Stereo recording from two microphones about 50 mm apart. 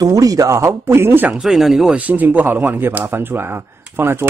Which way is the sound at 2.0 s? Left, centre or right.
Right.